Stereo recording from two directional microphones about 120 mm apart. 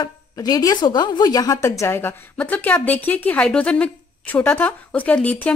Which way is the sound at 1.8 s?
20° left (ahead or behind).